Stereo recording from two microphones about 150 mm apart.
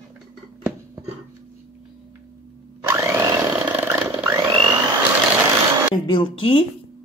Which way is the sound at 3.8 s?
15° right (ahead or behind).